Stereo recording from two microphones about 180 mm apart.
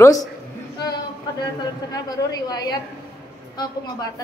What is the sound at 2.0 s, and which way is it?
Speech, 20° left (ahead or behind).